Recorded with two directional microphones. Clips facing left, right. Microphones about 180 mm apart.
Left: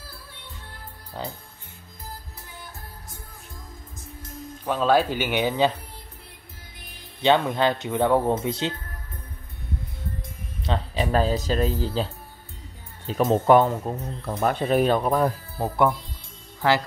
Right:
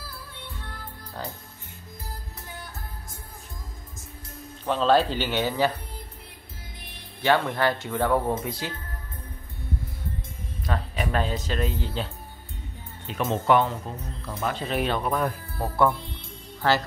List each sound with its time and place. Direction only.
1.1 s speech: 20° left (ahead or behind)
4.6 s speech: 10° left (ahead or behind)
7.2 s speech: 20° left (ahead or behind)
10.6 s speech: 25° left (ahead or behind)